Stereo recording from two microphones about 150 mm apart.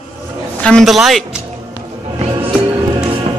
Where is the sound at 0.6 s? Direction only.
Centre (ahead or behind).